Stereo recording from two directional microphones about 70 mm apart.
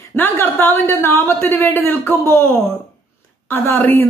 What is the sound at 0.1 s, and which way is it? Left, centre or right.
A woman's voice, left.